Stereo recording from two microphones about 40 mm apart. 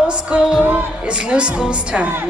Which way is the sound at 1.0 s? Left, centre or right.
Right.